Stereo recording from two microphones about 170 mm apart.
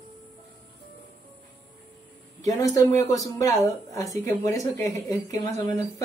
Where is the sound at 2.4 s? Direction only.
20° left (ahead or behind).